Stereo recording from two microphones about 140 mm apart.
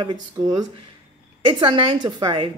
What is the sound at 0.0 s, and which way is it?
A woman's voice, 30° right (ahead or behind).